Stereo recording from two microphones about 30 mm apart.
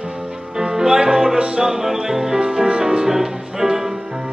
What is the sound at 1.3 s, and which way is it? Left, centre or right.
Music, right.